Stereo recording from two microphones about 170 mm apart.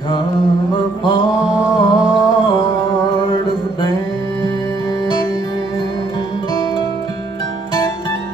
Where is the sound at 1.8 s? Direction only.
25° left (ahead or behind).